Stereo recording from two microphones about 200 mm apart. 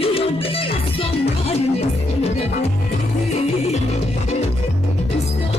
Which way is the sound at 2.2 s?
30° left (ahead or behind).